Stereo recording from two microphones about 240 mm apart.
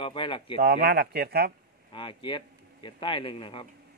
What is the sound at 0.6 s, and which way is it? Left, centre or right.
Speech, right.